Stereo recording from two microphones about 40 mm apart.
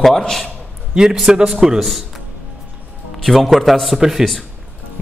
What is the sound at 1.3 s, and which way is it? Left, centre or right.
Speech, centre.